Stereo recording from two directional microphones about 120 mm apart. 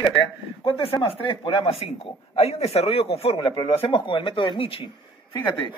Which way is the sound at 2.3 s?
60° left (ahead or behind).